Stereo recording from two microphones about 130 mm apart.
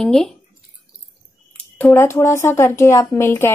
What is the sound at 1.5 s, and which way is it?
Speech, 15° left (ahead or behind).